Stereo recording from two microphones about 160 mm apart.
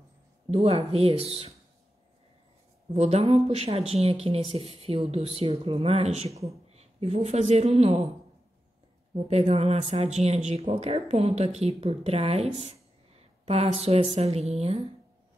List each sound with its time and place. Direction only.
0.5 s speech: 40° right (ahead or behind)
2.9 s speech: 40° right (ahead or behind)
9.1 s speech: 40° right (ahead or behind)